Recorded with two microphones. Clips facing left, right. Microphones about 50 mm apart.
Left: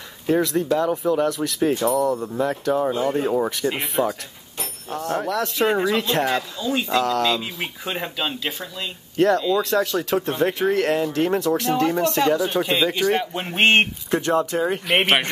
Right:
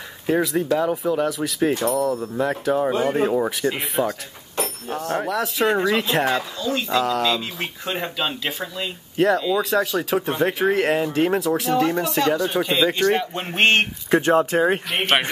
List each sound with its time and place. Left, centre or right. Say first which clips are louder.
0.3 s speech: even; centre
6.6 s speech: even; centre
6.9 s speech: even; centre
13.6 s speech: left 1 dB; centre
14.1 s speech: right 3 dB; right